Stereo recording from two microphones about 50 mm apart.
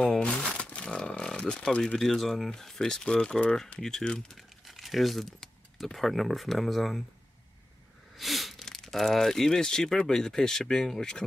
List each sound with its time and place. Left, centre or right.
0.2 s crumpling: centre
1.0 s a sound: centre
2.0 s speech: centre
4.4 s crumpling: centre
5.4 s speech: centre
8.2 s a sound: centre
8.6 s speech: centre